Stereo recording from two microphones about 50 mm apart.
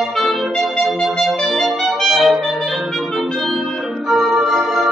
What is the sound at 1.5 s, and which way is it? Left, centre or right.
Clarinet, centre.